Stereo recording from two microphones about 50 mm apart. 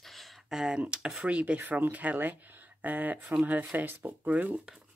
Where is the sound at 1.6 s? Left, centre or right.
Right.